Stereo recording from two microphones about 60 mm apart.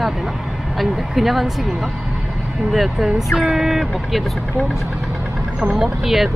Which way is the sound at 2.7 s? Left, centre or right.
Centre.